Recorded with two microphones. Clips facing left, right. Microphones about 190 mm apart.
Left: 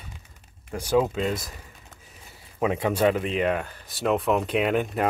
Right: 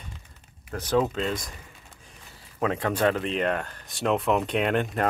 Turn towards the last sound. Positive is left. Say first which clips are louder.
# left 1 dB
turn(degrees=5)  # may be behind; listen again after turning